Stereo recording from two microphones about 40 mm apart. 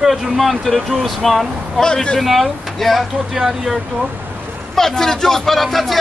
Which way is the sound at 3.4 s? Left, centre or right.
Centre.